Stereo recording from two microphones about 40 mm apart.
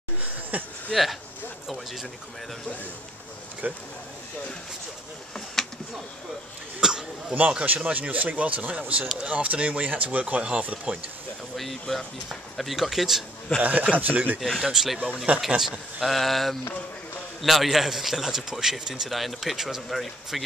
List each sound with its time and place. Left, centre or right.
0.2 s a sound: right
0.9 s speech: centre
3.6 s speech: right
5.6 s a sound: centre
6.8 s a sound: centre
7.6 s speech: right
11.5 s speech: centre
13.6 s speech: right
14.7 s a man's voice: centre
15.0 s speech: right
15.4 s a man's voice: centre
19.0 s speech: centre